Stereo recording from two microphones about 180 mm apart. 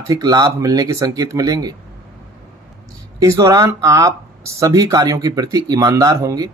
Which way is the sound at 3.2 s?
15° right (ahead or behind).